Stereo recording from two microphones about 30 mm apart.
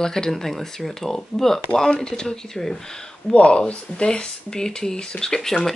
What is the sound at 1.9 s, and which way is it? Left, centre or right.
Speech, left.